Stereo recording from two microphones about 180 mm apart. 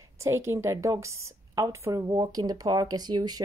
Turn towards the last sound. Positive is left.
turn(degrees=-20)  # may be behind; listen again after turning